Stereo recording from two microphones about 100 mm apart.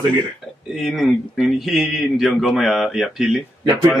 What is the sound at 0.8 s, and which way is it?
Speech, centre (ahead or behind).